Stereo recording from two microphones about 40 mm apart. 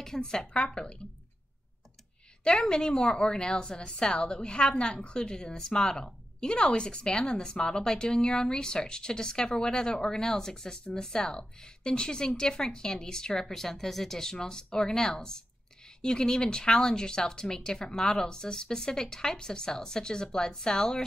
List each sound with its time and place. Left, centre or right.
0.0 s a woman's voice: centre
2.4 s a woman's voice: centre